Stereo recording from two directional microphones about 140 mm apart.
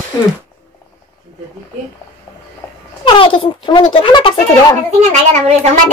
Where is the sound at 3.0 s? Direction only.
40° left (ahead or behind).